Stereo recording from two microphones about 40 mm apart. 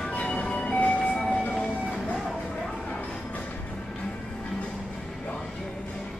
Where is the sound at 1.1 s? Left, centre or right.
Centre.